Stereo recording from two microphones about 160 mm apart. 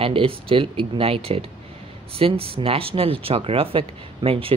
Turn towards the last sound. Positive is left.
turn(degrees=-35)  # may be behind; listen again after turning